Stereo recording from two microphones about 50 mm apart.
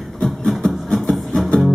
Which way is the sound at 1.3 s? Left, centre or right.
Centre.